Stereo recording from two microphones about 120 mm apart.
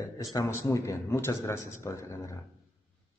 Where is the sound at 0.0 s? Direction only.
30° left (ahead or behind).